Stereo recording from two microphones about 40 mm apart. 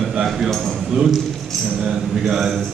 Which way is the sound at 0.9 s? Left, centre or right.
Centre.